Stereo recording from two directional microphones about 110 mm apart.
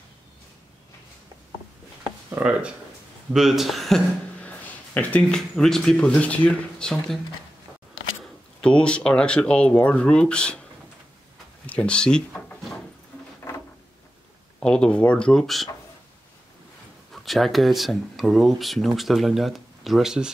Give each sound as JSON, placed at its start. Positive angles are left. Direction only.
{"t": 2.4, "sound": "speech", "side_deg": -15}
{"t": 3.3, "sound": "speech", "side_deg": 0}
{"t": 4.4, "sound": "speech", "side_deg": 15}
{"t": 8.2, "sound": "speech", "side_deg": 10}
{"t": 11.6, "sound": "drawer open or close", "side_deg": 10}
{"t": 14.6, "sound": "speech", "side_deg": 5}
{"t": 17.1, "sound": "speech", "side_deg": 0}